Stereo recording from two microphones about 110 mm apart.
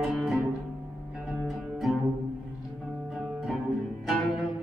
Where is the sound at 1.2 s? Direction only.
5° right (ahead or behind).